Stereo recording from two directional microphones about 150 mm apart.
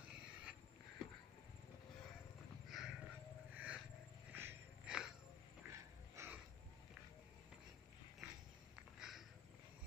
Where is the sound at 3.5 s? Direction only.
10° right (ahead or behind).